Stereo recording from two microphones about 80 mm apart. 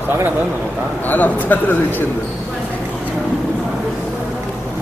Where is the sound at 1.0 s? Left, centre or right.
Left.